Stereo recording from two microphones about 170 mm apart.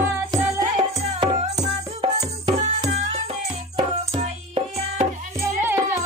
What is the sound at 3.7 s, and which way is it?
Music, 40° right (ahead or behind).